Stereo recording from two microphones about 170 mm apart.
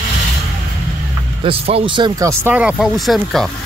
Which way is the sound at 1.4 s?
35° right (ahead or behind).